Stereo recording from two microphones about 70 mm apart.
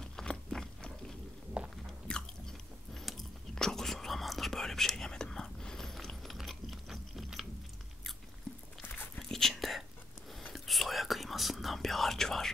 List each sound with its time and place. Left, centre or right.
0.0 s biting: centre
1.6 s biting: centre
1.9 s biting: centre
9.1 s whispering: centre